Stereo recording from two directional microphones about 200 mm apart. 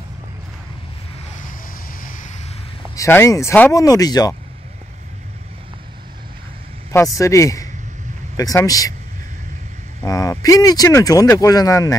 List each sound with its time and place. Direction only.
1.5 s vehicle: 45° left (ahead or behind)
3.0 s speech: 15° left (ahead or behind)
7.2 s speech: 15° left (ahead or behind)
10.0 s speech: 15° left (ahead or behind)